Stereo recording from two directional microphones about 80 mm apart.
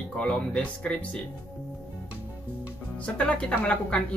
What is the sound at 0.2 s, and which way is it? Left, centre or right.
Speech, centre.